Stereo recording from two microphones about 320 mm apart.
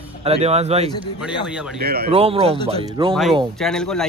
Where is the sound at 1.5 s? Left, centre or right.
Centre.